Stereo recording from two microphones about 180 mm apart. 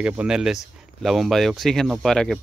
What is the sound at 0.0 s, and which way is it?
Speech, 5° right (ahead or behind).